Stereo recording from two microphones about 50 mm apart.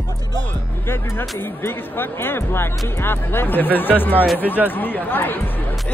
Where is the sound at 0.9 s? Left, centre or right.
Left.